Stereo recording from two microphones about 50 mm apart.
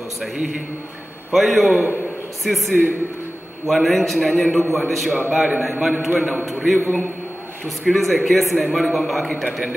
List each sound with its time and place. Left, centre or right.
0.2 s a man's voice: centre
1.8 s a man's voice: left
2.4 s a man's voice: centre
3.6 s a man's voice: centre